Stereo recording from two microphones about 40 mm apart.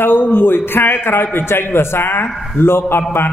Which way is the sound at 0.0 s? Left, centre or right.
Left.